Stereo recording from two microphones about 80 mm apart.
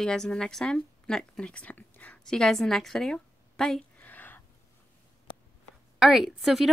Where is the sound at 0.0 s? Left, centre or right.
Centre.